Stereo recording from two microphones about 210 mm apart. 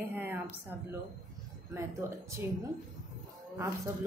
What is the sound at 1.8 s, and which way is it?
Speech, 15° right (ahead or behind).